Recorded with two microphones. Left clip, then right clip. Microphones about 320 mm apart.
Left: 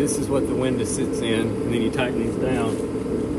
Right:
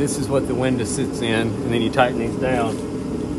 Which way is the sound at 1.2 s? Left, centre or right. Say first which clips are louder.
Right 4 dB; right.